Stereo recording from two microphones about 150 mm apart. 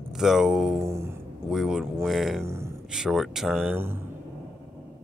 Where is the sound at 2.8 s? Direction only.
5° right (ahead or behind).